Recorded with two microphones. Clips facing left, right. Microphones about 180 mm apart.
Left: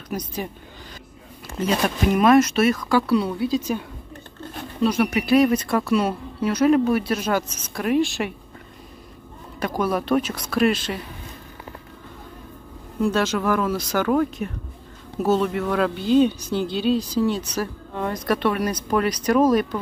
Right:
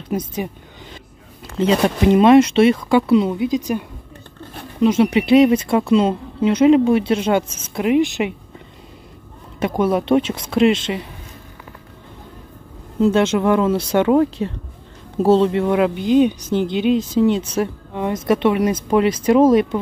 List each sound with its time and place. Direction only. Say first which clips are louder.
0.1 s speech: right 5 dB; 25° right (ahead or behind)
1.6 s speech: right 6 dB; 30° right (ahead or behind)
9.6 s speech: right 5 dB; 25° right (ahead or behind)
13.0 s speech: right 6 dB; 25° right (ahead or behind)